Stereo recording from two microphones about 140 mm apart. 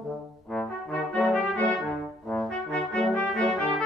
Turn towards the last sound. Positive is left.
turn(degrees=5)  # may be behind; listen again after turning